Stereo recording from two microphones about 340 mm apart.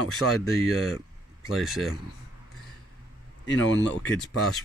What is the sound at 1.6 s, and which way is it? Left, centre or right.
Speech, centre.